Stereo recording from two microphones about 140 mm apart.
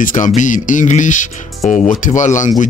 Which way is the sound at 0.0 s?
65° left (ahead or behind).